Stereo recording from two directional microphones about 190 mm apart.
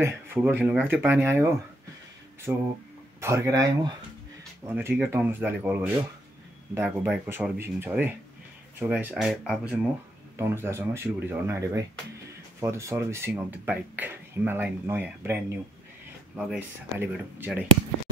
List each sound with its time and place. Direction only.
0.0 s speech: 10° right (ahead or behind)
10.3 s speech: 15° right (ahead or behind)
16.3 s speech: 5° right (ahead or behind)